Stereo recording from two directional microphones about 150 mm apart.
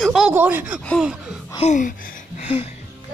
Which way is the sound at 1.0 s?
5° right (ahead or behind).